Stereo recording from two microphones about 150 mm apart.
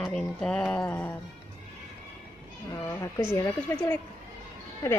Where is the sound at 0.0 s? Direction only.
5° left (ahead or behind).